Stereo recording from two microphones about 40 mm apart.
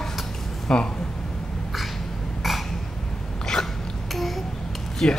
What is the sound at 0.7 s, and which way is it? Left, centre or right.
Speech, left.